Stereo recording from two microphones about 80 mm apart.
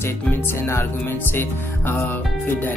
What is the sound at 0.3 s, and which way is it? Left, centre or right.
Speech, left.